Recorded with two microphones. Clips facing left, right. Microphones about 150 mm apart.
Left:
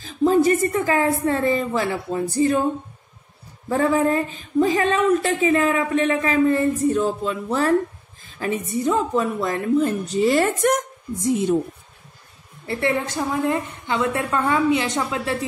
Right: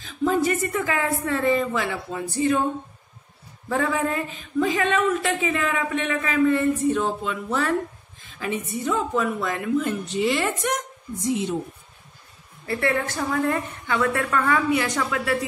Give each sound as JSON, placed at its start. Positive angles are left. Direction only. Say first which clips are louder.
{"t": 0.0, "sound": "speech", "louder": "left 5 dB", "side_deg": 35}
{"t": 3.7, "sound": "a woman's voice", "louder": "left 5 dB", "side_deg": 35}
{"t": 12.6, "sound": "a woman's voice", "louder": "left 1 dB", "side_deg": 20}